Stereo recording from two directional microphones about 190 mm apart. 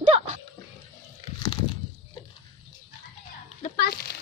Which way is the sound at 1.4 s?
20° left (ahead or behind).